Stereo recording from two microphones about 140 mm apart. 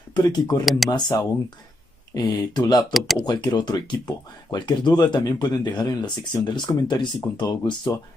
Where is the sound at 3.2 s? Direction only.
30° left (ahead or behind).